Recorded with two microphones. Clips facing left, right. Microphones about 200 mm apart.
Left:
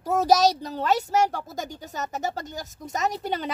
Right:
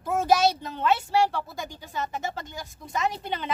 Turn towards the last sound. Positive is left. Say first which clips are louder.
# left 2 dB
turn(degrees=40)  # may be behind; listen again after turning